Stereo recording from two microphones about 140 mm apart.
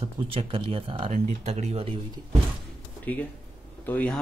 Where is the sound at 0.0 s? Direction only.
40° right (ahead or behind).